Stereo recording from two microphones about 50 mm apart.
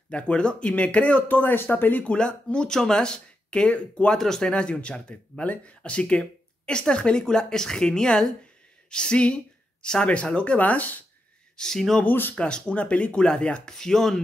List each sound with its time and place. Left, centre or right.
0.1 s speech: left
1.4 s speech: left
2.0 s speech: centre
4.1 s speech: centre; by 11.0 s left
11.5 s speech: centre
12.0 s speech: left
12.4 s speech: centre